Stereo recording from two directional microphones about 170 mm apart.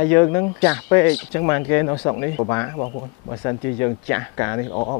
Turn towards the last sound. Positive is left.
turn(degrees=20)  # may be behind; listen again after turning